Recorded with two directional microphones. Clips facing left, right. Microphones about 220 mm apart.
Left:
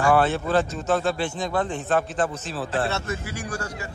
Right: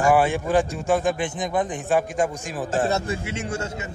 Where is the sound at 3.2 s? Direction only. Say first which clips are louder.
Right 3 dB; 25° right (ahead or behind).